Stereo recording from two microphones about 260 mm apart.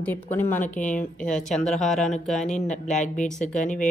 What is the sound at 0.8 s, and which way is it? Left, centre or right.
Speech, left.